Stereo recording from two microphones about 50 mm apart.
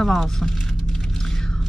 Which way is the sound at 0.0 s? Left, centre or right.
Centre.